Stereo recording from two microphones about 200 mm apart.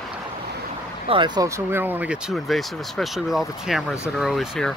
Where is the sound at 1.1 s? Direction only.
20° right (ahead or behind).